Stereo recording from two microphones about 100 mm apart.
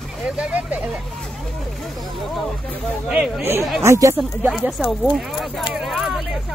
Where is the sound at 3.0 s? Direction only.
5° right (ahead or behind).